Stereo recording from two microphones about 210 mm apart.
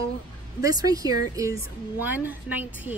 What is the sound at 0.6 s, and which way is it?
Speech, 15° right (ahead or behind).